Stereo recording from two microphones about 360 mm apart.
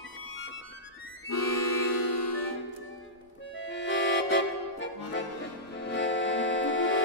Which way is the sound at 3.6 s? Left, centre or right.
Left.